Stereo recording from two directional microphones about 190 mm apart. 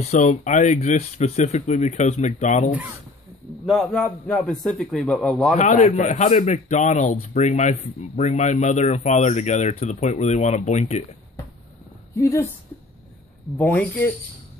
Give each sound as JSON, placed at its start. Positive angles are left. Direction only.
{"t": 0.0, "sound": "a man's voice", "side_deg": 35}
{"t": 3.6, "sound": "speech", "side_deg": 0}
{"t": 5.5, "sound": "a man's voice", "side_deg": 40}
{"t": 12.2, "sound": "speech", "side_deg": 15}
{"t": 13.6, "sound": "speech", "side_deg": 10}